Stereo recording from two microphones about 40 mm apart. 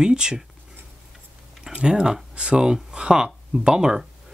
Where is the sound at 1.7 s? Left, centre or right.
Centre.